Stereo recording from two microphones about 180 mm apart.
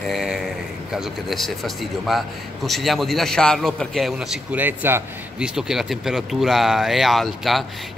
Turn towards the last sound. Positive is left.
turn(degrees=0)  # may be behind; listen again after turning